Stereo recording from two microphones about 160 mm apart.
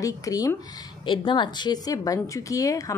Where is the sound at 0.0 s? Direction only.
20° left (ahead or behind).